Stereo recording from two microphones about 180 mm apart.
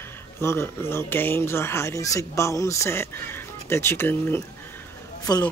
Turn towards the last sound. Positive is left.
turn(degrees=20)  # may be behind; listen again after turning